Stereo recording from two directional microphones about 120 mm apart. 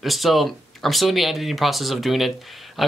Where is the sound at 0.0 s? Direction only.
Centre (ahead or behind).